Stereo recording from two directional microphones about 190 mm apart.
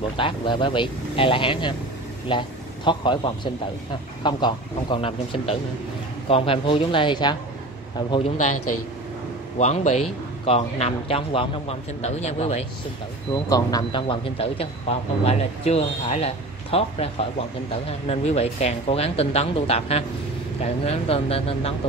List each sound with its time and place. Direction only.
0.2 s speech: 25° left (ahead or behind)
4.2 s speech: 25° left (ahead or behind)
9.6 s a man's voice: 35° left (ahead or behind)
13.3 s a man's voice: 20° left (ahead or behind)